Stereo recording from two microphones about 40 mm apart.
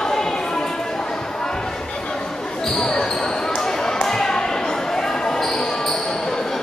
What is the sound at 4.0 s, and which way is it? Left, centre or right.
Basketball bounce, centre.